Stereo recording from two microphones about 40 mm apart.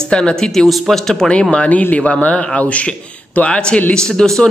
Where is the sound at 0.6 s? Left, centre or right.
Centre.